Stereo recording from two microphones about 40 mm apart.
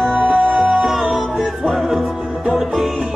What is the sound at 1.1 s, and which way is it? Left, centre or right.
Music, centre.